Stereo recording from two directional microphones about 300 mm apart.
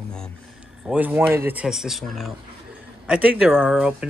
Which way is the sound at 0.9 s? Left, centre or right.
Centre.